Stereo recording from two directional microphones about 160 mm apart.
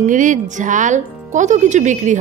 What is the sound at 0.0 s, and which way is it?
A woman's voice, 55° right (ahead or behind).